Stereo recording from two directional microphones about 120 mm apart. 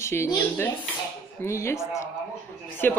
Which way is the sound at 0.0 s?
20° left (ahead or behind).